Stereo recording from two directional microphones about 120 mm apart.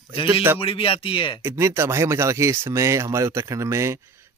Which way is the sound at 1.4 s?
20° right (ahead or behind).